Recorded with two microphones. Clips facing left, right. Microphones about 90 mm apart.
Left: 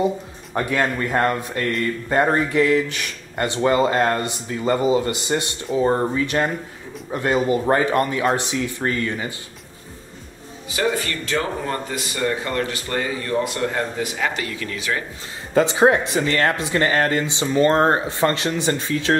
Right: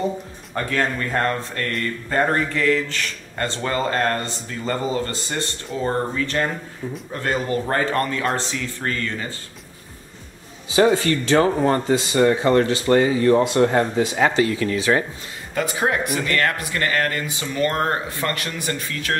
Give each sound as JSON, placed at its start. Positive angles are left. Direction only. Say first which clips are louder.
{"t": 0.6, "sound": "speech", "louder": "left 2 dB", "side_deg": 15}
{"t": 10.7, "sound": "speech", "louder": "right 6 dB", "side_deg": -30}
{"t": 15.5, "sound": "speech", "louder": "left 6 dB", "side_deg": 25}